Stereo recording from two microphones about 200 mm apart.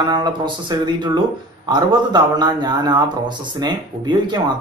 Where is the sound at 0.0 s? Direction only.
20° right (ahead or behind).